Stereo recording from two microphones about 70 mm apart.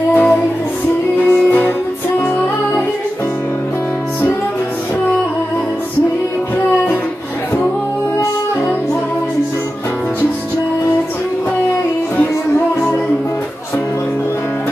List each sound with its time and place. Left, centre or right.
0.1 s music: left